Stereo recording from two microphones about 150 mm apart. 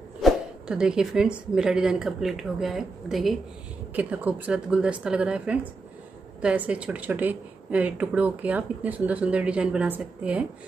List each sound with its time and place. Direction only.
0.2 s a woman's voice: 5° right (ahead or behind)